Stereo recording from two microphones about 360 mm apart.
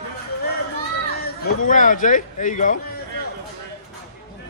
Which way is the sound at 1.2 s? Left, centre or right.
Left.